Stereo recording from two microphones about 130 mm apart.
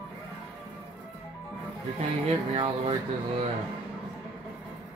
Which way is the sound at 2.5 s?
45° right (ahead or behind).